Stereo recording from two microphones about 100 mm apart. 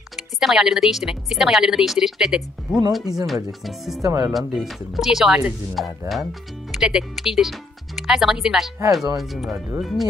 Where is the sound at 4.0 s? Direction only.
35° right (ahead or behind).